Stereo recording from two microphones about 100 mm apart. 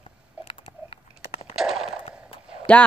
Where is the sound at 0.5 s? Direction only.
65° left (ahead or behind).